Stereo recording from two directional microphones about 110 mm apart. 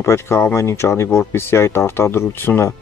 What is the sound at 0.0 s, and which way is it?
Speech, 25° left (ahead or behind).